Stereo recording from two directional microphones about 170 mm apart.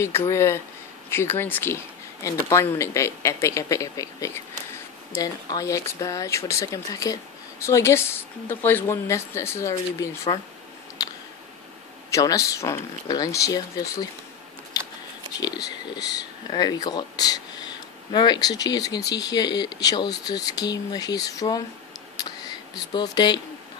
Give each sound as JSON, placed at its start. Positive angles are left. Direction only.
{"t": 0.0, "sound": "speech", "side_deg": 15}
{"t": 11.0, "sound": "a sound", "side_deg": 20}
{"t": 12.1, "sound": "speech", "side_deg": 20}
{"t": 16.1, "sound": "speech", "side_deg": 25}
{"t": 22.9, "sound": "speech", "side_deg": 25}